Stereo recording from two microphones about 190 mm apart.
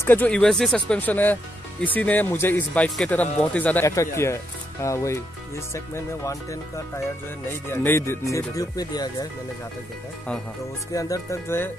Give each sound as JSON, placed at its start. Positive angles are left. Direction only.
{"t": 0.0, "sound": "speech", "side_deg": 10}
{"t": 7.7, "sound": "speech", "side_deg": 10}
{"t": 10.9, "sound": "speech", "side_deg": 15}